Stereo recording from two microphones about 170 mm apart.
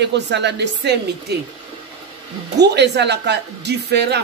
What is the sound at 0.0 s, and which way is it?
Speech, 90° right.